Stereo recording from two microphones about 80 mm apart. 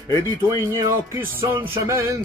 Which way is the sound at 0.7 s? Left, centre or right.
Right.